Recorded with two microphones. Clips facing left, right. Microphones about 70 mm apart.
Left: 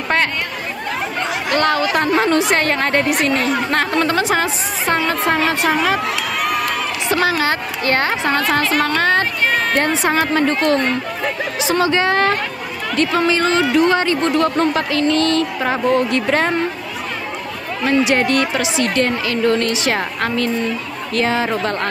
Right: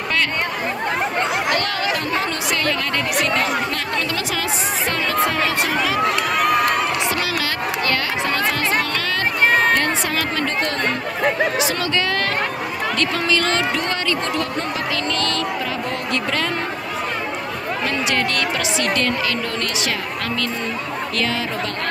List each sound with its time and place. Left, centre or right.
1.6 s a sound: left
3.9 s chatter: left
7.2 s a sound: left
9.8 s a woman's voice: left
11.6 s speech: left
15.1 s speech: left
17.8 s speech: left